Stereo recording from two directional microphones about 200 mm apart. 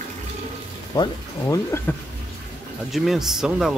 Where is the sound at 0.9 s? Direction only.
20° left (ahead or behind).